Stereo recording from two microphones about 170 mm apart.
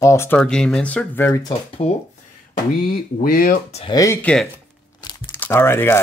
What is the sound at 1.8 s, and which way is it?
Speech, 40° left (ahead or behind).